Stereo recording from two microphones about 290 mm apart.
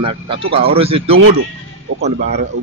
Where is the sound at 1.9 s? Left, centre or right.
Right.